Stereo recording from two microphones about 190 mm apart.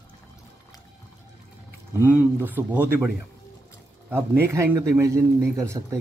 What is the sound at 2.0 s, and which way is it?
Speech, 10° right (ahead or behind).